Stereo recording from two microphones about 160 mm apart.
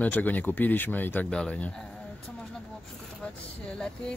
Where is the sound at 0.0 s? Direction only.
10° left (ahead or behind).